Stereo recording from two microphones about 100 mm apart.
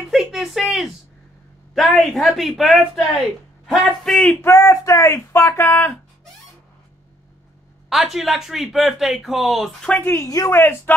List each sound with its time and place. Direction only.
0.1 s a sound: centre (ahead or behind)
1.8 s speech: centre (ahead or behind)
4.4 s speech: 30° left (ahead or behind)
7.9 s speech: centre (ahead or behind)
9.8 s speech: 20° left (ahead or behind)
10.2 s speech: 35° left (ahead or behind)
10.6 s speech: 20° left (ahead or behind)